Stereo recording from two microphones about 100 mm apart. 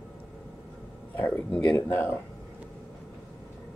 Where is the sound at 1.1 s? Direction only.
15° left (ahead or behind).